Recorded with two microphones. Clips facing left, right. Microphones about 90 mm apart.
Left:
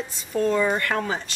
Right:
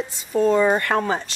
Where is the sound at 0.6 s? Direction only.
35° right (ahead or behind).